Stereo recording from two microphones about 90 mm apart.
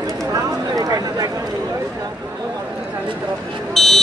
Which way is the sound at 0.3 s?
45° right (ahead or behind).